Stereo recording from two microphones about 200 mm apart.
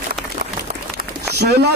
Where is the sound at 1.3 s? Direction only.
55° right (ahead or behind).